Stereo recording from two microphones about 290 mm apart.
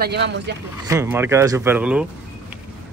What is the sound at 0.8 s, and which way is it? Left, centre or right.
Speech, centre.